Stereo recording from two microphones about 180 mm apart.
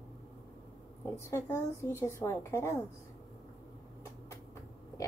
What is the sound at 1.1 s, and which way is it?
Speech, 15° left (ahead or behind).